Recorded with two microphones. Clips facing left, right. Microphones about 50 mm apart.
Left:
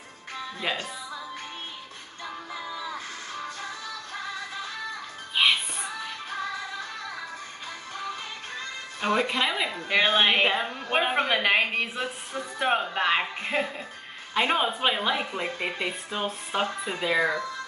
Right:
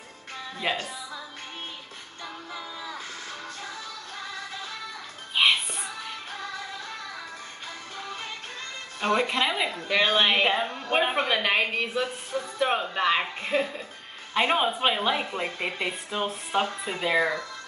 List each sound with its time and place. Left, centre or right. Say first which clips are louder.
0.7 s speech: right 2 dB; centre
2.6 s a sound: left 5 dB; left
9.0 s speech: right 1 dB; centre
9.8 s speech: left 1 dB; centre
14.3 s speech: right 1 dB; centre